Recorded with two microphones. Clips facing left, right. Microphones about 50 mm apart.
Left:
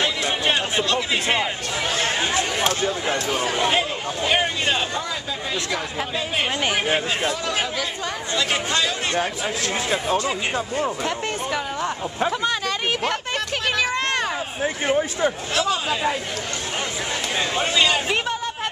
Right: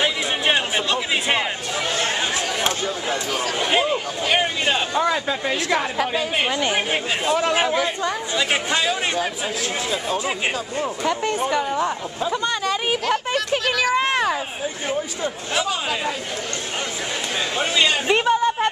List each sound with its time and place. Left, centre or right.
0.0 s music: centre
2.0 s chatter: centre
3.7 s a sound: centre
5.1 s speech: right
6.7 s speech: centre
7.5 s speech: right
11.1 s speech: centre
12.3 s a sound: centre
14.6 s speech: left
15.5 s speech: centre
17.6 s a man's voice: centre